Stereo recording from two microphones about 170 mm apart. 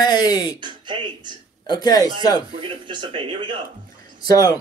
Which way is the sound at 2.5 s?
35° right (ahead or behind).